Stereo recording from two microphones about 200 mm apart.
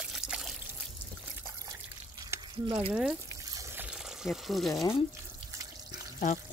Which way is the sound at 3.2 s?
15° right (ahead or behind).